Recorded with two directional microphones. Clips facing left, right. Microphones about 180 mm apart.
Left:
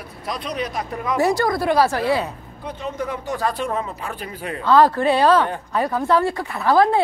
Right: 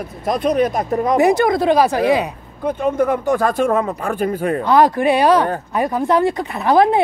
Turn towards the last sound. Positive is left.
turn(degrees=-20)  # may be behind; listen again after turning